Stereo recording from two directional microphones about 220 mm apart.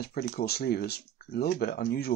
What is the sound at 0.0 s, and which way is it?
Speech, 45° left (ahead or behind).